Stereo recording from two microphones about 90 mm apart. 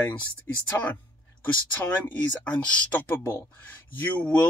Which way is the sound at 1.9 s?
15° left (ahead or behind).